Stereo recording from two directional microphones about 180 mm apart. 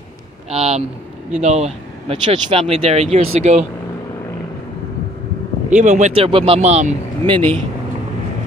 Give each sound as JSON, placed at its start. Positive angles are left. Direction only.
{"t": 0.5, "sound": "speech", "side_deg": -35}
{"t": 5.7, "sound": "speech", "side_deg": -40}